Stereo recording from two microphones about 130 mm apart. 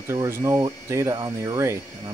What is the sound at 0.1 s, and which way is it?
Speech, 25° right (ahead or behind).